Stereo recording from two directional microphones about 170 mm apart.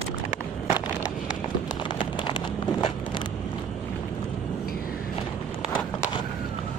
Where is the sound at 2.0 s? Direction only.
30° left (ahead or behind).